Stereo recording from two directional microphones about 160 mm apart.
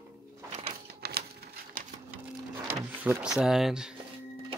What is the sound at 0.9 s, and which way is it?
Typewriter, 85° right.